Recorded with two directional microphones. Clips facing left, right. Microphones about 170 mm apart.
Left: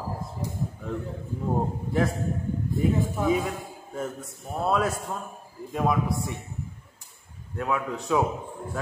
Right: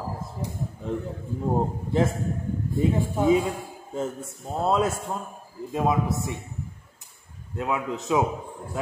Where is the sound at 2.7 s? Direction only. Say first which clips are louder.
Right 2 dB; 25° right (ahead or behind).